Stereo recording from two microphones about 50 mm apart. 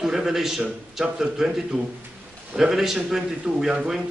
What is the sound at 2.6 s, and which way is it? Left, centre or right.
A man's voice, centre.